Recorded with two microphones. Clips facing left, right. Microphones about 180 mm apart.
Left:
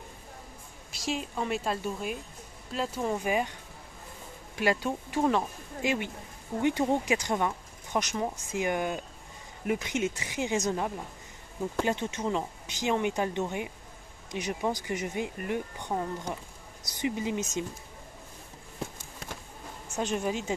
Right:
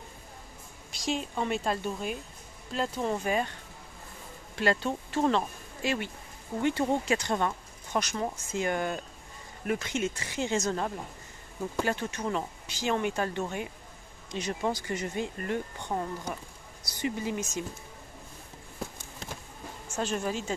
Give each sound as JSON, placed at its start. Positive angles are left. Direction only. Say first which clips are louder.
{"t": 0.9, "sound": "a woman's voice", "louder": "right 1 dB", "side_deg": 5}
{"t": 4.6, "sound": "speech", "louder": "even", "side_deg": 10}
{"t": 20.0, "sound": "speech", "louder": "left 1 dB", "side_deg": 15}